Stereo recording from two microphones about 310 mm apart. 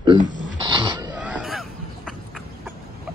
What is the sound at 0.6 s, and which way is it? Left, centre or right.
Music, centre.